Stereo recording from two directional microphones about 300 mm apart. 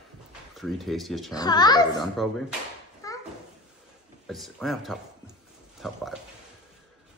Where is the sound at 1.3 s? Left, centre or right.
Centre.